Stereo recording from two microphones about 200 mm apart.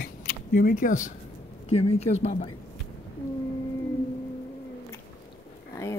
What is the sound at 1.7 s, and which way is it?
Speech, 30° left (ahead or behind).